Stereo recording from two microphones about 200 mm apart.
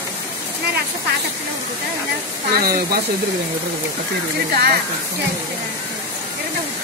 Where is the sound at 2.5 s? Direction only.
45° right (ahead or behind).